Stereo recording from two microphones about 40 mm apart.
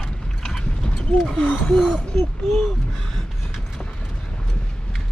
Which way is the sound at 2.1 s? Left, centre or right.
Centre.